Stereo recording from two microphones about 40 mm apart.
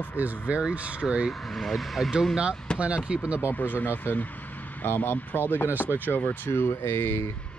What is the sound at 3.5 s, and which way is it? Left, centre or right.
Speech, left.